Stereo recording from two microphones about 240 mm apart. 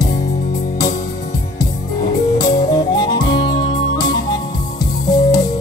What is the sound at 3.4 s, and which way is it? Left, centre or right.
Music, left.